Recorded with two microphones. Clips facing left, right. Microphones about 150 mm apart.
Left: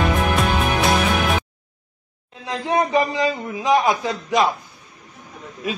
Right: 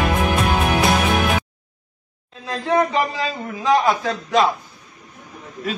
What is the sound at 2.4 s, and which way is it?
A man's voice, 20° left (ahead or behind).